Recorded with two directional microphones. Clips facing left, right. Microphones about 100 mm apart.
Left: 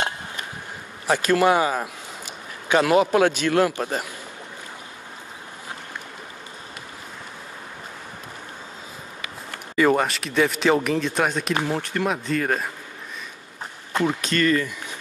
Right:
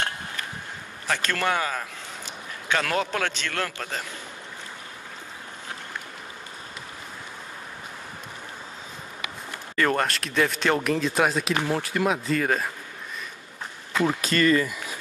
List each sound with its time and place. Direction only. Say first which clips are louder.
1.0 s a man's voice: left 8 dB; 15° left (ahead or behind)
9.8 s speech: left 5 dB; 5° left (ahead or behind)
14.0 s speech: even; 5° right (ahead or behind)